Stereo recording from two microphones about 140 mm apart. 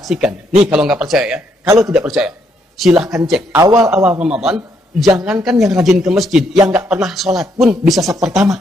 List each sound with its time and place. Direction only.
0.0 s a man's voice: 5° right (ahead or behind)
3.5 s a man's voice: 20° right (ahead or behind)
3.8 s a man's voice: 5° right (ahead or behind)